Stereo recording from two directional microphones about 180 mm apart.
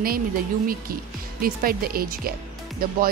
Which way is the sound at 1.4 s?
55° right (ahead or behind).